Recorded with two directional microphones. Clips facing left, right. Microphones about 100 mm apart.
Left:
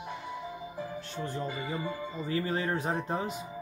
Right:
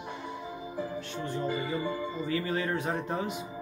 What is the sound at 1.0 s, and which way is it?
Speech, 35° left (ahead or behind).